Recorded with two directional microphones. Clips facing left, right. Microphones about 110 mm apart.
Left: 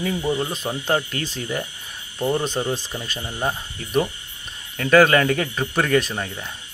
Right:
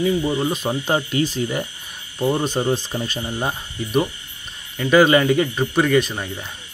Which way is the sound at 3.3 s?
10° right (ahead or behind).